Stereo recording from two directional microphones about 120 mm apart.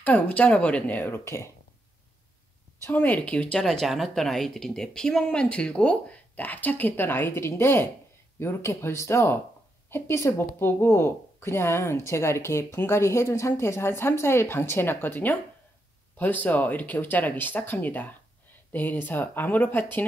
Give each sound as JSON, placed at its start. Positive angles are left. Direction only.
{"t": 0.0, "sound": "speech", "side_deg": 15}
{"t": 2.8, "sound": "speech", "side_deg": 15}